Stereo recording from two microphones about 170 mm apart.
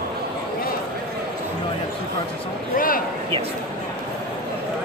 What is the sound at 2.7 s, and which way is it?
Speech, 55° left (ahead or behind).